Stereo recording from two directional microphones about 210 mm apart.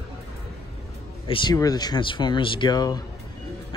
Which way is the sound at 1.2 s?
25° left (ahead or behind).